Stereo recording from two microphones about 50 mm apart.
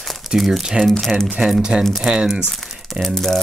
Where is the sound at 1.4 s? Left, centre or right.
Right.